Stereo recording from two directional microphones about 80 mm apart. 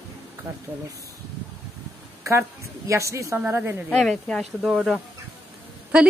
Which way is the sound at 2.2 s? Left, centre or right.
Right.